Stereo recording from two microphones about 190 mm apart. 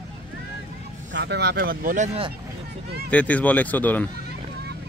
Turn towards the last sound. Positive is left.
turn(degrees=10)  # may be behind; listen again after turning